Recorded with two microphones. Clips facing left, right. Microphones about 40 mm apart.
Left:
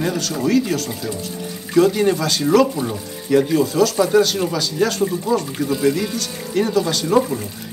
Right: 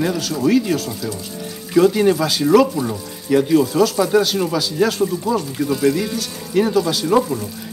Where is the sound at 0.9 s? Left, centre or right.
Centre.